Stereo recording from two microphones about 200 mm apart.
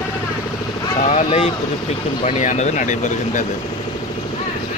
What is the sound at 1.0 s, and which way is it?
Speech, 35° left (ahead or behind).